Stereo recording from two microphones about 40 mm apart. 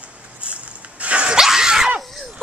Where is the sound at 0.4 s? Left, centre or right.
Right.